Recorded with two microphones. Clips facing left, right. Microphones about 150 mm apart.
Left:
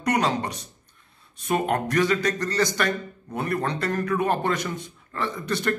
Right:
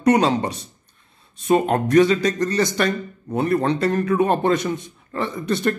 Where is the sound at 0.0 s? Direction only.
25° right (ahead or behind).